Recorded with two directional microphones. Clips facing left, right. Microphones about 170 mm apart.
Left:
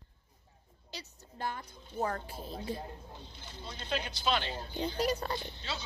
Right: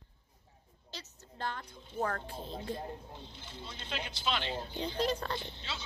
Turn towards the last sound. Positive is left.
turn(degrees=40)  # may be behind; listen again after turning